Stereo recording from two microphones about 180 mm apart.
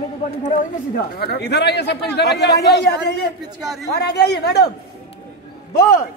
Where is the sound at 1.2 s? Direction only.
65° left (ahead or behind).